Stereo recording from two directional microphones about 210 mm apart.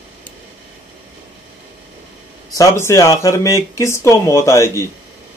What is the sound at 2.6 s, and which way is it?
Speech, 15° left (ahead or behind).